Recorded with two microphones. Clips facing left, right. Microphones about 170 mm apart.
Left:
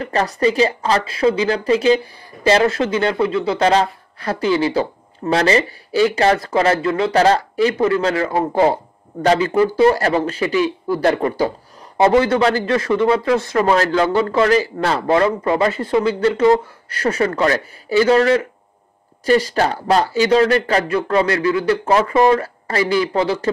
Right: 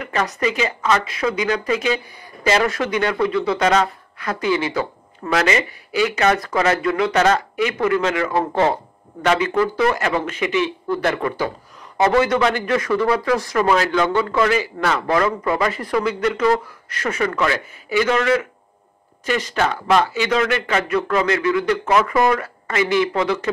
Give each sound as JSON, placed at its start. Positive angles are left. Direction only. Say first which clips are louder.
{"t": 0.0, "sound": "speech", "louder": "left 4 dB", "side_deg": 30}